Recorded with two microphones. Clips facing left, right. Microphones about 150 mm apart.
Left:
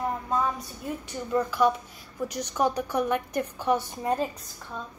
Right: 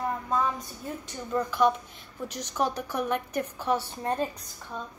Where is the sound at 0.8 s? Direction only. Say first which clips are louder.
Left 4 dB; 10° left (ahead or behind).